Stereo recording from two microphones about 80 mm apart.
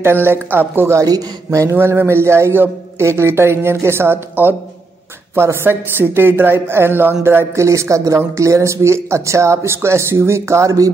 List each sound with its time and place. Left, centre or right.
0.0 s speech: right
1.0 s speech: right